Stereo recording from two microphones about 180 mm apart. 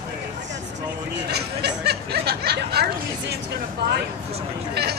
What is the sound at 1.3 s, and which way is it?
Speech, 65° right (ahead or behind).